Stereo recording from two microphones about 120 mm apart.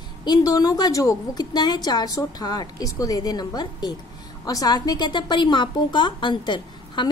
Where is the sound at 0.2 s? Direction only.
35° left (ahead or behind).